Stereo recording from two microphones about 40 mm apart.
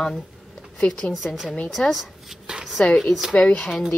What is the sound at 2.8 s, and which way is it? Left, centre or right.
Speech, left.